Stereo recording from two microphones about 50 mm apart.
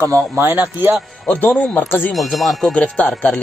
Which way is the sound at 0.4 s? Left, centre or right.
Right.